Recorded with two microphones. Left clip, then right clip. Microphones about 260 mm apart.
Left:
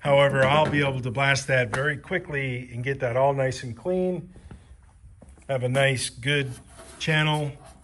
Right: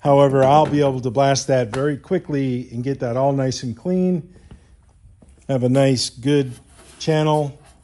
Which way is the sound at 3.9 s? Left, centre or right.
Right.